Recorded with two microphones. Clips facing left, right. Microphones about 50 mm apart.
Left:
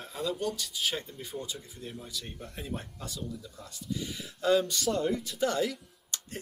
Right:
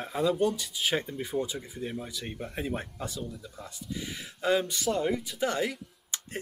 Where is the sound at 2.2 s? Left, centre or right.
Right.